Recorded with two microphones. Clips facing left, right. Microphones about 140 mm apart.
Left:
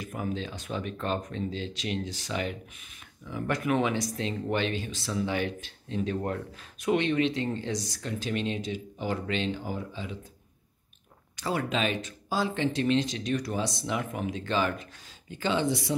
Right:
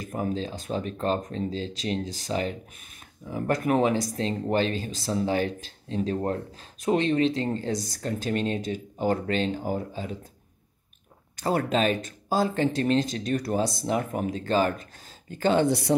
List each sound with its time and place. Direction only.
0.0 s speech: 40° right (ahead or behind)
11.3 s speech: 45° right (ahead or behind)